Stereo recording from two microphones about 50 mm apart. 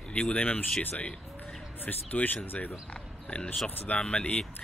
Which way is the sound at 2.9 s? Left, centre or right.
Left.